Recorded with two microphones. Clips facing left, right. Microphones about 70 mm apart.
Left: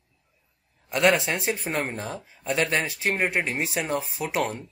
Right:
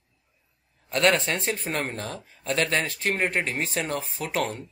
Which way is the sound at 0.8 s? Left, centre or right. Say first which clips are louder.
Left 1 dB; centre.